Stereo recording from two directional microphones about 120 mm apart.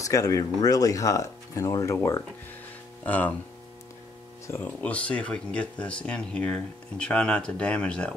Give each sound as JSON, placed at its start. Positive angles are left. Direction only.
{"t": 0.0, "sound": "speech", "side_deg": 30}
{"t": 3.1, "sound": "speech", "side_deg": 15}
{"t": 4.5, "sound": "speech", "side_deg": 15}